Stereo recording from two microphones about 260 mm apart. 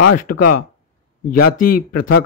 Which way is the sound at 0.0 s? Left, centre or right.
Left.